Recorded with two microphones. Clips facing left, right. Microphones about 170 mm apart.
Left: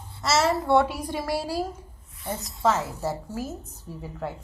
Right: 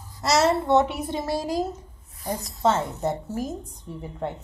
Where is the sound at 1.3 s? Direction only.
10° left (ahead or behind).